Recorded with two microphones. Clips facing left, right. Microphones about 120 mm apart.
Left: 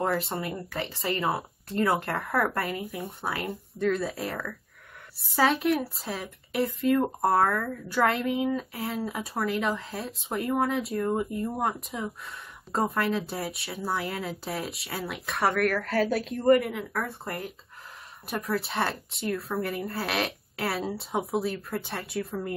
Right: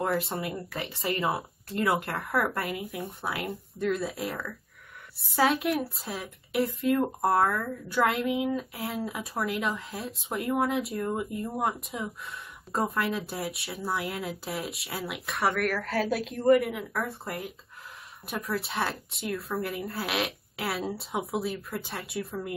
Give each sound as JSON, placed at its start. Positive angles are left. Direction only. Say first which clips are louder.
{"t": 0.0, "sound": "speech", "louder": "left 1 dB", "side_deg": 0}
{"t": 18.3, "sound": "speech", "louder": "left 2 dB", "side_deg": 0}